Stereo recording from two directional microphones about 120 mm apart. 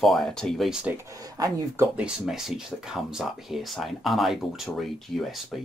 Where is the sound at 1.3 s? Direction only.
30° right (ahead or behind).